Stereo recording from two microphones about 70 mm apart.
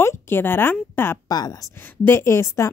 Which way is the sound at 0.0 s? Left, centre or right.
Left.